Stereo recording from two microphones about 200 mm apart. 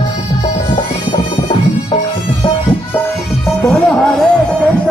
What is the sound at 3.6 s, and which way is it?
Music, 5° left (ahead or behind).